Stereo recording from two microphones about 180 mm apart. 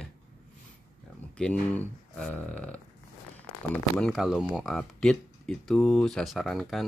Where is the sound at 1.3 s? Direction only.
5° left (ahead or behind).